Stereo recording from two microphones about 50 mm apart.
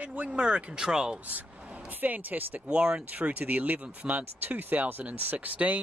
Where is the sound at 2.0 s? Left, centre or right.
Right.